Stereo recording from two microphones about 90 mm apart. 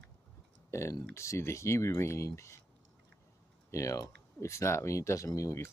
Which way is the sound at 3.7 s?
35° left (ahead or behind).